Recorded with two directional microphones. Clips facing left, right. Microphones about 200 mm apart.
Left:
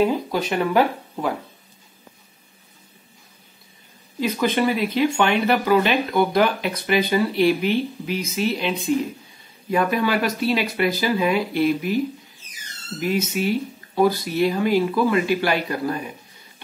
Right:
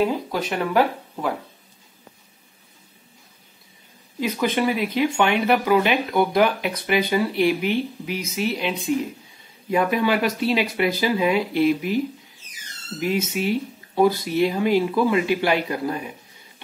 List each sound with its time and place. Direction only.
0.0 s speech: centre (ahead or behind)
4.2 s speech: 10° right (ahead or behind)
13.0 s speech: 25° right (ahead or behind)